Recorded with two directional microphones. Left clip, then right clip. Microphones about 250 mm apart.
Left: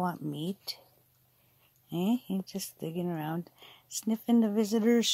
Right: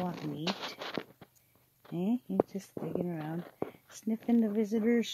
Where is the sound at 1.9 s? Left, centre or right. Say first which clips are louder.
Right 1 dB; centre.